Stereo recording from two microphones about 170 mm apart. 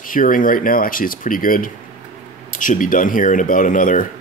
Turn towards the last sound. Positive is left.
turn(degrees=50)  # may be behind; listen again after turning